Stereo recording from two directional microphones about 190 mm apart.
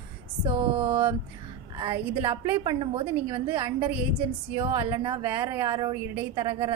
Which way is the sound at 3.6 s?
10° right (ahead or behind).